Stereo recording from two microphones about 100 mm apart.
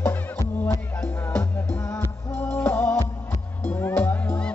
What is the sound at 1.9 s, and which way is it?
Music, 15° left (ahead or behind).